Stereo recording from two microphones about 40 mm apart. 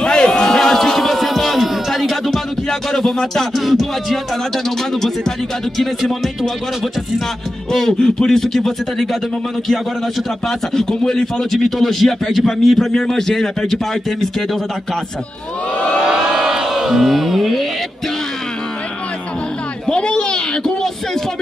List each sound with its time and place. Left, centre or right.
0.0 s a sound: centre
2.7 s a man's voice: centre
3.5 s speech: centre
7.7 s a man's voice: centre
10.7 s a man's voice: centre
11.8 s speech: centre
12.7 s a man's voice: centre
16.0 s a sound: right; by 17.6 s centre
19.9 s a sound: left